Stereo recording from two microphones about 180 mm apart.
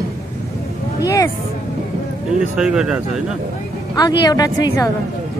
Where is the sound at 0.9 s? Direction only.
20° left (ahead or behind).